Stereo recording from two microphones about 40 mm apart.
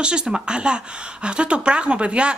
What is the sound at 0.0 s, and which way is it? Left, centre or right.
Speech, right.